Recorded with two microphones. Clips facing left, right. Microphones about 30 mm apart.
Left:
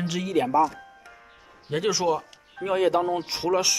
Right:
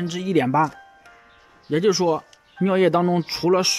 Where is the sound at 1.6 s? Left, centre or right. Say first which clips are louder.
Right 5 dB; centre.